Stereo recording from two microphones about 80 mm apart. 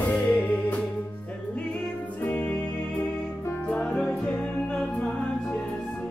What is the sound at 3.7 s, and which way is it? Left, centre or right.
Music, centre.